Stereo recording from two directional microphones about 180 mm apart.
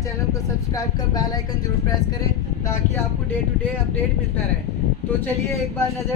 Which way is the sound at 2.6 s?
15° left (ahead or behind).